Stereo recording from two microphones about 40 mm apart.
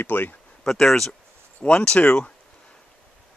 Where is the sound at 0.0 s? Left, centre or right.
Left.